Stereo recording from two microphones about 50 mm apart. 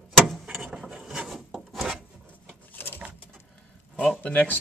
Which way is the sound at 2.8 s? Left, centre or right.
Left.